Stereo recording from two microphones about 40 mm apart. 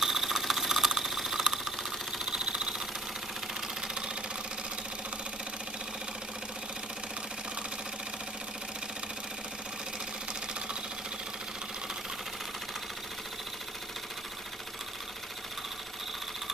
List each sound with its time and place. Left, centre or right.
0.0 s engine: centre
2.2 s engine: right
3.8 s engine: right